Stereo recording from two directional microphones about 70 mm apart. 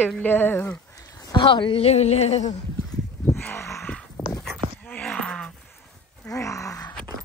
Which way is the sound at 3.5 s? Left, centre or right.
Left.